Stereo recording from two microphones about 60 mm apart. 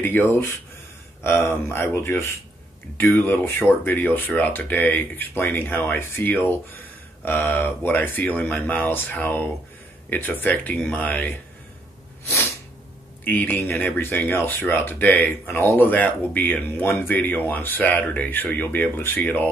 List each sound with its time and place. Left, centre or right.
0.0 s speech: left
13.2 s speech: left